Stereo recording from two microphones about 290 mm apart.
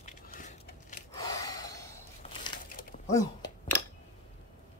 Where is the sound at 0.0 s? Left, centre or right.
Left.